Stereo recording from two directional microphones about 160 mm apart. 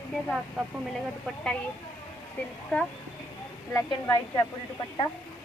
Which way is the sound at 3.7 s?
20° left (ahead or behind).